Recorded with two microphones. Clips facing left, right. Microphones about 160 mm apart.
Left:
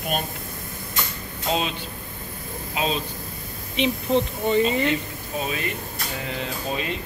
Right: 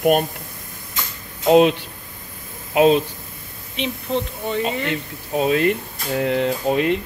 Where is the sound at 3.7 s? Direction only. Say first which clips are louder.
Left 2 dB; centre (ahead or behind).